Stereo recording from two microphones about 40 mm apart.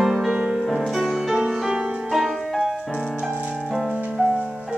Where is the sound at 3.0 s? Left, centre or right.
Centre.